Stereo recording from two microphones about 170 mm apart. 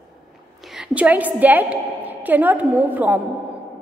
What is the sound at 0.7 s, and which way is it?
A woman's voice, 10° right (ahead or behind).